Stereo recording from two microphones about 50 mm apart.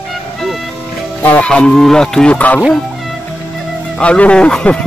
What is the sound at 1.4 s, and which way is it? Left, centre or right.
Speech, centre.